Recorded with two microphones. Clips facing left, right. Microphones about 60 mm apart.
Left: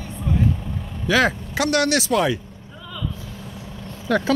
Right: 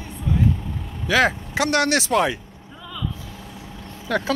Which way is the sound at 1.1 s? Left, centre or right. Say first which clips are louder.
Even; centre.